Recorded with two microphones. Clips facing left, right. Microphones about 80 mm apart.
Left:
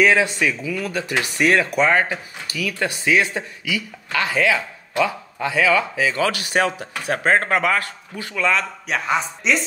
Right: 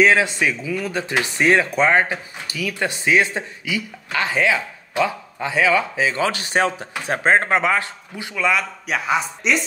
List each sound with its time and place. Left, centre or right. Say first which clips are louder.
0.0 s a man's voice: right 1 dB; right; by 9.6 s centre